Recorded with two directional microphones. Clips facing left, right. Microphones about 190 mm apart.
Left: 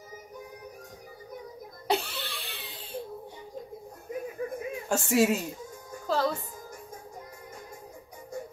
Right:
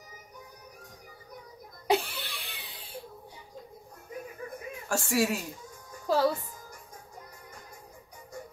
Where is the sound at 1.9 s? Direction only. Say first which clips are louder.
Right 2 dB; 10° right (ahead or behind).